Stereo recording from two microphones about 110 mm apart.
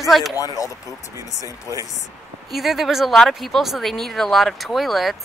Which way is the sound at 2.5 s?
Centre (ahead or behind).